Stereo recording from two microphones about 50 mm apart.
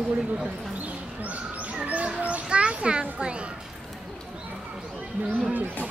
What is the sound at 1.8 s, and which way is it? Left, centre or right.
Children playing, right.